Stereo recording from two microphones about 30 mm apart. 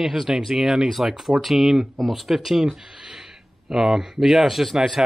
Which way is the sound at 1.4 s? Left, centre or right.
Centre.